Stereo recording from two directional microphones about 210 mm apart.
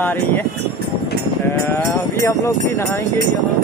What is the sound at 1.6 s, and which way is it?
Speech, 10° left (ahead or behind).